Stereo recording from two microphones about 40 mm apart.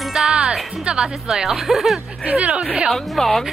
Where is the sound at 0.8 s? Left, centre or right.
Right.